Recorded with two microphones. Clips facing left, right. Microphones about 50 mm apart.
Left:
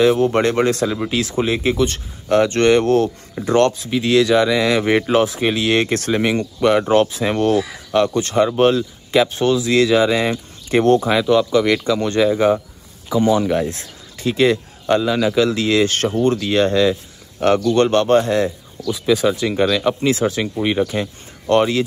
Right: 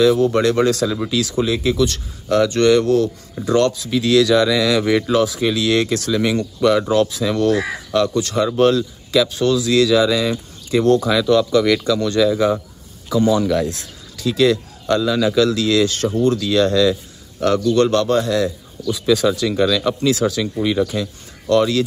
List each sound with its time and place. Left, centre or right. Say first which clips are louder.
0.0 s speech: even; left
6.2 s speech: right 1 dB; left
11.0 s speech: even; left
15.9 s speech: even; left
18.9 s speech: even; centre